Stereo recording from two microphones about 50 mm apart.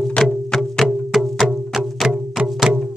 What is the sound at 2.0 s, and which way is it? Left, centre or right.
Music, centre.